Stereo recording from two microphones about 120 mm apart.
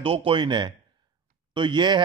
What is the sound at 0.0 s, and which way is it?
Speech, 50° right (ahead or behind).